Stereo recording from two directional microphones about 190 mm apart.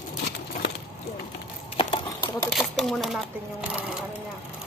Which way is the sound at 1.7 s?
25° left (ahead or behind).